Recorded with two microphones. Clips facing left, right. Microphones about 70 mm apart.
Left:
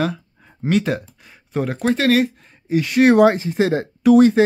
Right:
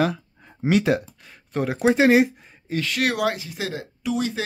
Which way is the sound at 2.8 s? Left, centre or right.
Left.